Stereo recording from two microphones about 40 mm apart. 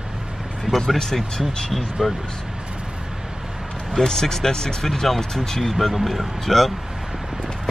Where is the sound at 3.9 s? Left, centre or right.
Centre.